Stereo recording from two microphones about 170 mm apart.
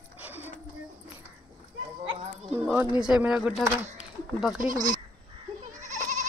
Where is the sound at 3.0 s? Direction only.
5° right (ahead or behind).